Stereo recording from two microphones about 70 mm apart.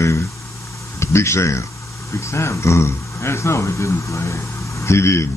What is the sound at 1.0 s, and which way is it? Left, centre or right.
Speech, left.